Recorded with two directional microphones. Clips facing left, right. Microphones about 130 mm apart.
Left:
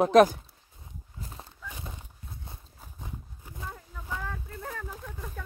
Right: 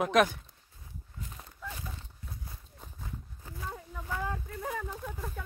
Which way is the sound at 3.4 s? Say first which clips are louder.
Right 1 dB; 15° left (ahead or behind).